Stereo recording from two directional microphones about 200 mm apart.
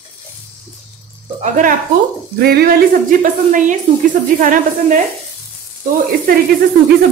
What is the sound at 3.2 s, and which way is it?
Speech, 40° right (ahead or behind).